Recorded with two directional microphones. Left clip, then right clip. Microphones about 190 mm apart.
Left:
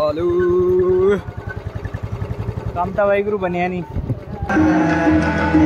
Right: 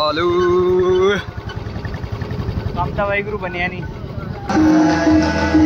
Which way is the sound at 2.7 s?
50° left (ahead or behind).